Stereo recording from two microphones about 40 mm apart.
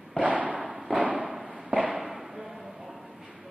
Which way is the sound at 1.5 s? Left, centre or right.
Right.